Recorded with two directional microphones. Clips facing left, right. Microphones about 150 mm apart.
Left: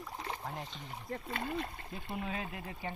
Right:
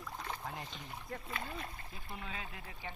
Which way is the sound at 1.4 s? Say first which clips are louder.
Left 6 dB; 60° left (ahead or behind).